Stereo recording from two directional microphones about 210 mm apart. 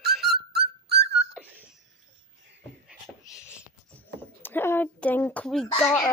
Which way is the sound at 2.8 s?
5° right (ahead or behind).